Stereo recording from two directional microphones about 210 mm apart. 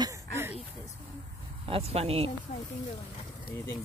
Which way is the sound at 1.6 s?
30° right (ahead or behind).